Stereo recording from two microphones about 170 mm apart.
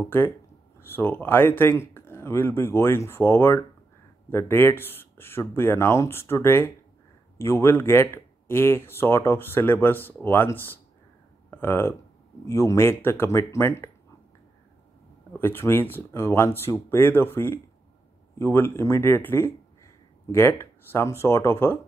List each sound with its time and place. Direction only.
0.0 s speech: 15° left (ahead or behind)
15.3 s speech: 15° left (ahead or behind)